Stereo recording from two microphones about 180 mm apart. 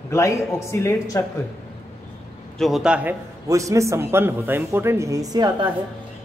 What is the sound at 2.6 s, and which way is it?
A man's voice, centre (ahead or behind).